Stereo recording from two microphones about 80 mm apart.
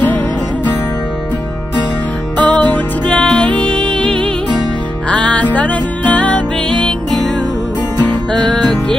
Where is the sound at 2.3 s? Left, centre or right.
Centre.